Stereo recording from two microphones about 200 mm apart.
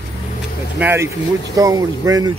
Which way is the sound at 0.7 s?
10° right (ahead or behind).